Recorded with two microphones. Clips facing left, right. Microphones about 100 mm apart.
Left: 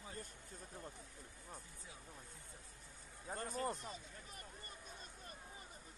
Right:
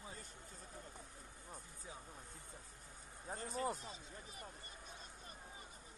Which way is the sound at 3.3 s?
50° left (ahead or behind).